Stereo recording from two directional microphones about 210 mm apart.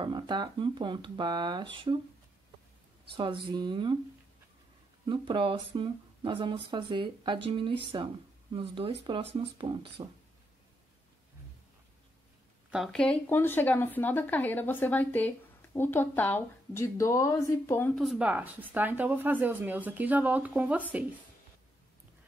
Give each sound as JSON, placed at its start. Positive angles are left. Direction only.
{"t": 0.0, "sound": "speech", "side_deg": -20}
{"t": 3.2, "sound": "speech", "side_deg": -25}
{"t": 5.0, "sound": "speech", "side_deg": -20}
{"t": 12.7, "sound": "speech", "side_deg": 0}
{"t": 18.0, "sound": "speech", "side_deg": -5}